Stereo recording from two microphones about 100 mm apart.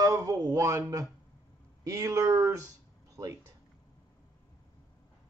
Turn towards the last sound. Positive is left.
turn(degrees=-35)  # may be behind; listen again after turning